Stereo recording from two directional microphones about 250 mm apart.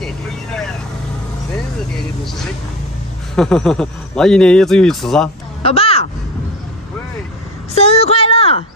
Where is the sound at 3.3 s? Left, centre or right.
Centre.